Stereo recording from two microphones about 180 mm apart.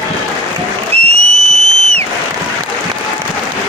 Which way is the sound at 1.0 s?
35° right (ahead or behind).